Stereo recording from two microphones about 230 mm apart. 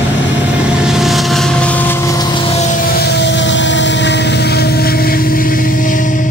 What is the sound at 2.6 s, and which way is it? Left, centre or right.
Vehicle, left.